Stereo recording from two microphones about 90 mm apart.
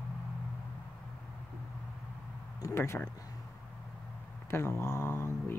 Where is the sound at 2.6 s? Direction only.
35° left (ahead or behind).